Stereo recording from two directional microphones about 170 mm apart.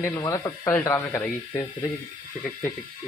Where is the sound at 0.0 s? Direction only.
20° left (ahead or behind).